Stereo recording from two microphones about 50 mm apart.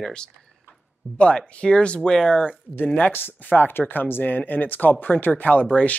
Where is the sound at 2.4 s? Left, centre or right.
Left.